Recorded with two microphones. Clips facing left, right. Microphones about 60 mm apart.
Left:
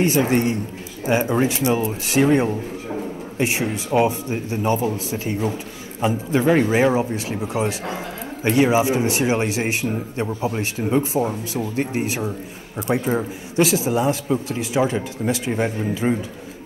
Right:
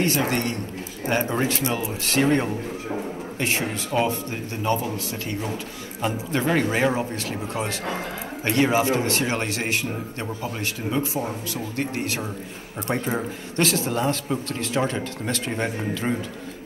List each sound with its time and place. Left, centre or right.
0.0 s a man's voice: centre
12.8 s a man's voice: centre